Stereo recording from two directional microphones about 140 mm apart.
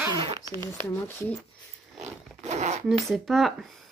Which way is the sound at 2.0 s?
55° right (ahead or behind).